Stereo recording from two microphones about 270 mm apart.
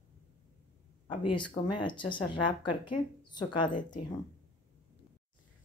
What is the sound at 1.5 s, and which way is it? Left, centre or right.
A woman's voice, centre.